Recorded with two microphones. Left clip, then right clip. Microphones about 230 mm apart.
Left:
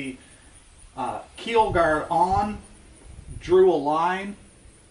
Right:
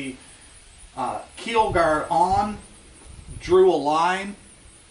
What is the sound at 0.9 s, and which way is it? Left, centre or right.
Speech, centre.